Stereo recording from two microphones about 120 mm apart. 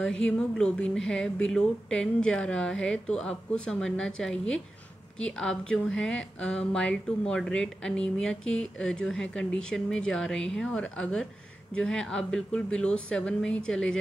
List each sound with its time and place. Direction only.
0.0 s speech: 5° left (ahead or behind)